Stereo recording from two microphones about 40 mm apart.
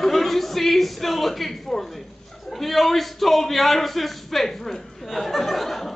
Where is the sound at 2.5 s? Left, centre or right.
Centre.